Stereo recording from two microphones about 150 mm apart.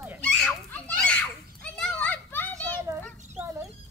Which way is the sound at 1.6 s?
5° left (ahead or behind).